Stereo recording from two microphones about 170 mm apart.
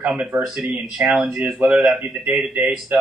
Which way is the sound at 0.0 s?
5° right (ahead or behind).